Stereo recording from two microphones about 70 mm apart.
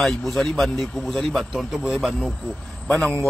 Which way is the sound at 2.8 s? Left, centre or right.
Centre.